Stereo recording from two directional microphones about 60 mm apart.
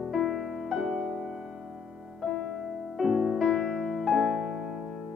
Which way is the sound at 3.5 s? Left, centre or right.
Centre.